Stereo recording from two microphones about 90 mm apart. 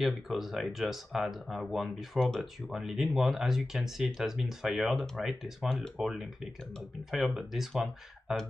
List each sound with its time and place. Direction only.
0.0 s speech: centre (ahead or behind)